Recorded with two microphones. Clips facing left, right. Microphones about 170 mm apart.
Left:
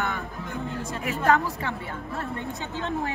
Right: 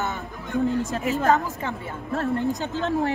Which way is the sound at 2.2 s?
90° right.